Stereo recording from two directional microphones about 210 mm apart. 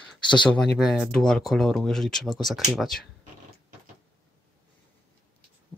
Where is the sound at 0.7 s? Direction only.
Centre (ahead or behind).